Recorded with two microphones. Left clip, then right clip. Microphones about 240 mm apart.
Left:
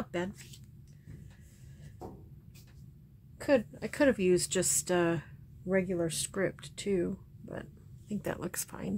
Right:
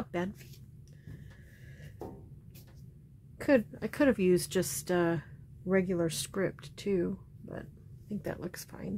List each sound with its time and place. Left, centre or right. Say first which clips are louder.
3.3 s a sound: right 1 dB; right
3.7 s speech: even; centre
5.7 s speech: right 1 dB; centre